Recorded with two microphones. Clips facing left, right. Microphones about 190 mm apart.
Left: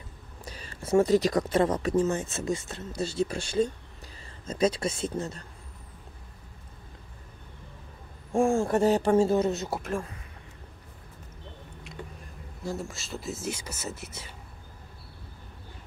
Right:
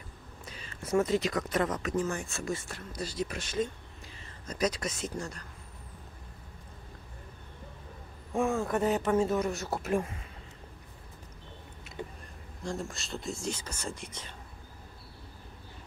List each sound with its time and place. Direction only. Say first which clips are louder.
0.5 s speech: left 5 dB; 35° left (ahead or behind)
8.3 s speech: left 5 dB; 30° left (ahead or behind)
12.0 s a sound: right 3 dB; 20° right (ahead or behind)
12.6 s speech: left 2 dB; centre (ahead or behind)